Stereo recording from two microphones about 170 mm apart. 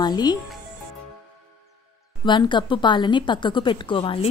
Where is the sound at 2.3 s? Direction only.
25° left (ahead or behind).